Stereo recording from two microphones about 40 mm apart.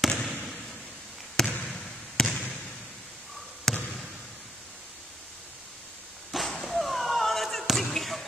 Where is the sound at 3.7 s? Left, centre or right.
Centre.